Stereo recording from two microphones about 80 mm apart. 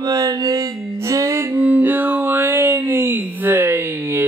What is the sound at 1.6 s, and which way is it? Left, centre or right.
Music, centre.